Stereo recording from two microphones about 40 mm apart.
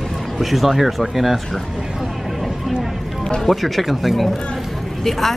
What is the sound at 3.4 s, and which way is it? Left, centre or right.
Speech, centre.